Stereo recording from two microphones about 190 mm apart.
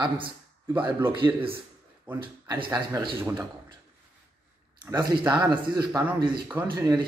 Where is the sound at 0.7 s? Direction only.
5° right (ahead or behind).